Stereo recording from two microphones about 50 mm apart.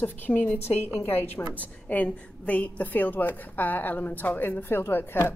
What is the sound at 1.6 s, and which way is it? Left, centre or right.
A woman's voice, left.